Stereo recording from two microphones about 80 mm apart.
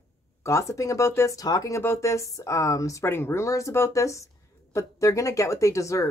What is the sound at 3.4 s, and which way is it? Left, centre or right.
Speech, left.